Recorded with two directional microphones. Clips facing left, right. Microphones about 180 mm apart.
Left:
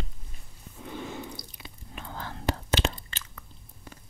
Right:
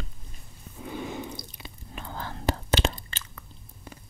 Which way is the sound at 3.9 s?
20° right (ahead or behind).